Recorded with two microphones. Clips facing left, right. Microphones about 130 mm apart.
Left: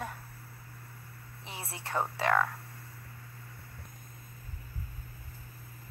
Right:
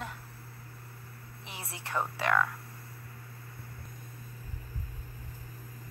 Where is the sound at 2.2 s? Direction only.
35° left (ahead or behind).